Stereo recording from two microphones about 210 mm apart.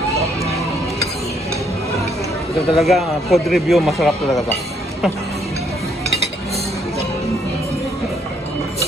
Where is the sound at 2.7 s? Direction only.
Centre (ahead or behind).